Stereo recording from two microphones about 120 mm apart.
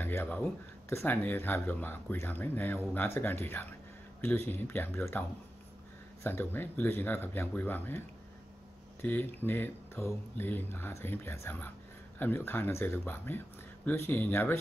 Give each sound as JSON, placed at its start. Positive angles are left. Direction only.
{"t": 0.0, "sound": "speech", "side_deg": 15}
{"t": 6.2, "sound": "speech", "side_deg": 20}
{"t": 9.0, "sound": "speech", "side_deg": 15}